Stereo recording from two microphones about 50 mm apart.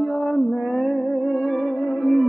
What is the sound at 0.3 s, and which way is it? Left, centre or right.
Music, centre.